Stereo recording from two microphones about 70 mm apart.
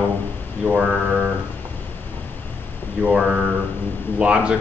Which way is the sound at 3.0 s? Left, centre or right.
Centre.